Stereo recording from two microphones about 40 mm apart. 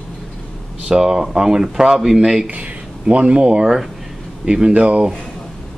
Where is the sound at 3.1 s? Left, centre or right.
Right.